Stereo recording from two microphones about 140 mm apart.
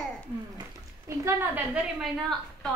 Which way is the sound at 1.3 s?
15° right (ahead or behind).